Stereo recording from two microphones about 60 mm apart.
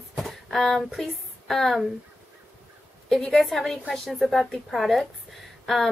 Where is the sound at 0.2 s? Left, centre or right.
Centre.